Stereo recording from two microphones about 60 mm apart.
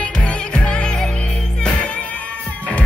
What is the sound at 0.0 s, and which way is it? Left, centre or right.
Music, centre.